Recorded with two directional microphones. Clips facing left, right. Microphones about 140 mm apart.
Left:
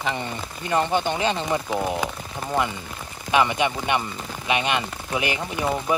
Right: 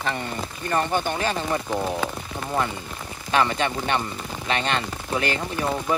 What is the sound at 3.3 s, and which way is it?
Speech, 15° left (ahead or behind).